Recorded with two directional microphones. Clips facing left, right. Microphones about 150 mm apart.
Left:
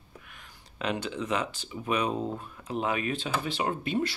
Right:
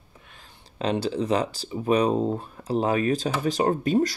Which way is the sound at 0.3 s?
30° right (ahead or behind).